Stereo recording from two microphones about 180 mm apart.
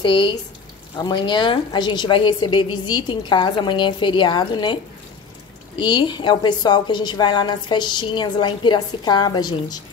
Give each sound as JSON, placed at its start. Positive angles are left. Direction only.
{"t": 0.0, "sound": "a woman's voice", "side_deg": 25}
{"t": 5.8, "sound": "a woman's voice", "side_deg": 25}